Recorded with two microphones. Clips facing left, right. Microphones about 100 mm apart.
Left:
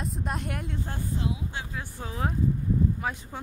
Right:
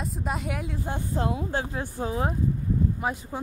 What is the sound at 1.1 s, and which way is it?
Speech, 55° right (ahead or behind).